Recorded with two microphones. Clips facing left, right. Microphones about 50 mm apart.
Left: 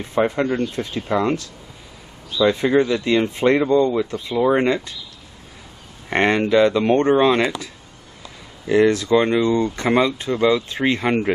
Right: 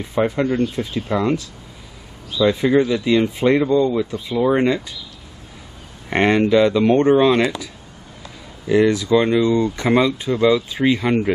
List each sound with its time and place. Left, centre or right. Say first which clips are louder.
0.0 s speech: even; centre
2.4 s speech: right 1 dB; centre
6.0 s speech: right 2 dB; centre
8.6 s speech: even; centre